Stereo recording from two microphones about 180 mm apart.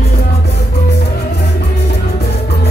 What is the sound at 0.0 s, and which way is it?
Music, 60° left (ahead or behind).